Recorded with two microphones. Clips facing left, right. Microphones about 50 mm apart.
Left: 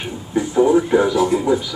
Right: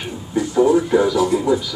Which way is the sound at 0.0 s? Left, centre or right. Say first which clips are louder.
Left 1 dB; centre.